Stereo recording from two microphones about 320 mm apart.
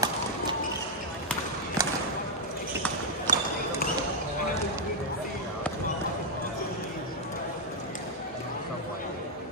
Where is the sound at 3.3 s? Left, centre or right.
Right.